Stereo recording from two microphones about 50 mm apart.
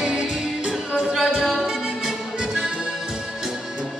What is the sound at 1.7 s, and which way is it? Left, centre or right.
Music, centre.